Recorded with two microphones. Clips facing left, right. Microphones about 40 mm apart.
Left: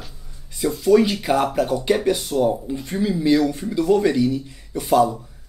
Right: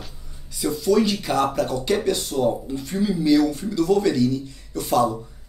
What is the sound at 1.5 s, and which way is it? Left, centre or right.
Speech, centre.